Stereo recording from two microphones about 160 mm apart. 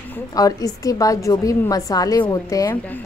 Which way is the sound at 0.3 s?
20° left (ahead or behind).